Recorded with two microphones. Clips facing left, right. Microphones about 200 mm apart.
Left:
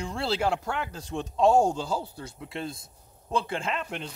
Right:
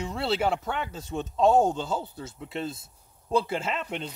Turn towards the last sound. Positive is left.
turn(degrees=0)  # may be behind; listen again after turning